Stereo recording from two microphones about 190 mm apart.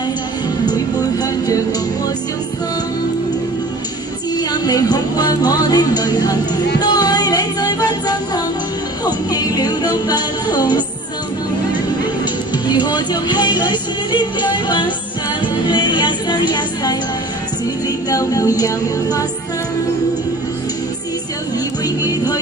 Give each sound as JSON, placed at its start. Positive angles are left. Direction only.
{"t": 4.4, "sound": "music", "side_deg": 20}
{"t": 12.6, "sound": "music", "side_deg": 20}
{"t": 18.1, "sound": "music", "side_deg": 20}
{"t": 21.8, "sound": "music", "side_deg": 20}